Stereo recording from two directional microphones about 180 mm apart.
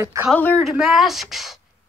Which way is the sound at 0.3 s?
5° left (ahead or behind).